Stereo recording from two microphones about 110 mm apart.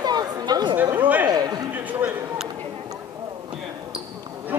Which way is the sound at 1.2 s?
35° right (ahead or behind).